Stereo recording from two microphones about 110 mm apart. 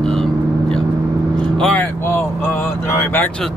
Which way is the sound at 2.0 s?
20° left (ahead or behind).